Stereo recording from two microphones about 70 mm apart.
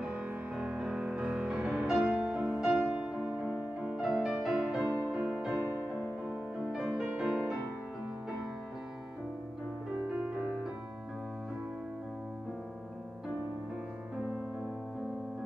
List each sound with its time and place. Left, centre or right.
0.0 s music: centre
4.8 s music: right
5.1 s music: right